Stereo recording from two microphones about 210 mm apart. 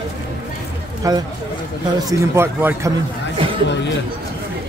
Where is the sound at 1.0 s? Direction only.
15° right (ahead or behind).